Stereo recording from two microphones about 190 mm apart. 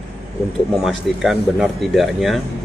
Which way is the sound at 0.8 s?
Centre (ahead or behind).